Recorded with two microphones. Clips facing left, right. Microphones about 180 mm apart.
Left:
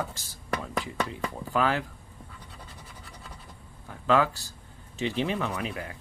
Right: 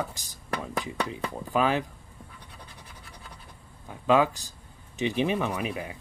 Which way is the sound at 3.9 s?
15° right (ahead or behind).